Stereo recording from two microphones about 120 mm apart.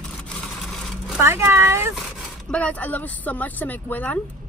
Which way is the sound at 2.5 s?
10° left (ahead or behind).